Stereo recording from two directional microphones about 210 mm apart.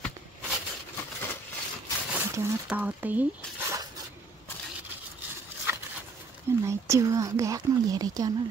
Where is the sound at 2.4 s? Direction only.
10° right (ahead or behind).